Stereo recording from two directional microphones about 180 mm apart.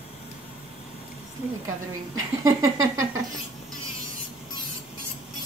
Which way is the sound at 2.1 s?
20° right (ahead or behind).